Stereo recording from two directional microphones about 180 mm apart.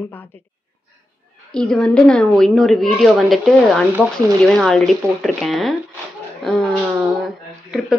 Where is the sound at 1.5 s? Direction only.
5° left (ahead or behind).